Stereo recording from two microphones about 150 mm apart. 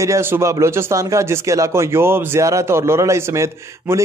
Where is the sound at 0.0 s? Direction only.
20° right (ahead or behind).